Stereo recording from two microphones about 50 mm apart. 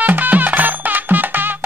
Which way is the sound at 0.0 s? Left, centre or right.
Right.